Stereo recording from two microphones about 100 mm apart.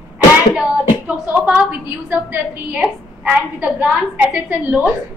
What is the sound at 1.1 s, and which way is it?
A woman's voice, 15° right (ahead or behind).